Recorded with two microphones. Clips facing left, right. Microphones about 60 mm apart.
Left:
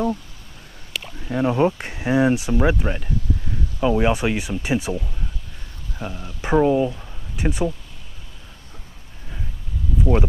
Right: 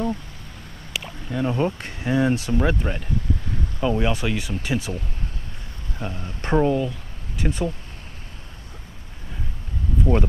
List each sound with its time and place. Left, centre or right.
1.3 s speech: left
5.9 s speech: centre
6.8 s a sound: left